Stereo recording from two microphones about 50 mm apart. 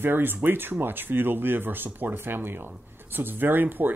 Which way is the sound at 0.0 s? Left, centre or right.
Right.